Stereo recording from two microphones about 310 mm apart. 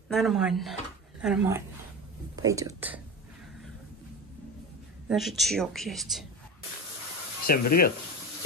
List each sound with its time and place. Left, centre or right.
0.1 s a woman's voice: centre
5.0 s a woman's voice: centre
7.4 s speech: left